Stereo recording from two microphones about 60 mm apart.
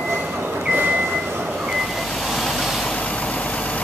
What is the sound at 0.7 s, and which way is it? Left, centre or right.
Vehicle, right.